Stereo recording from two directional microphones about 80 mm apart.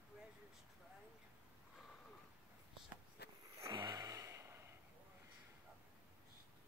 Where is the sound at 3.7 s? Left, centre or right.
Right.